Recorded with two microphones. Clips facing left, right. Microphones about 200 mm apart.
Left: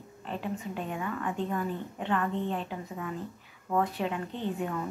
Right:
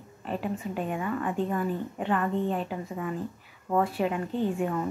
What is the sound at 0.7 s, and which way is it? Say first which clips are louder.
Speech: right 4 dB; 45° right (ahead or behind).